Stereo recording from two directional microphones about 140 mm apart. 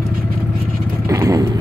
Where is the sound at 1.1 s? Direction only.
25° right (ahead or behind).